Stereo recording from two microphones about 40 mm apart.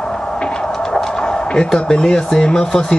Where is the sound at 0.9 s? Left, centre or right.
Centre.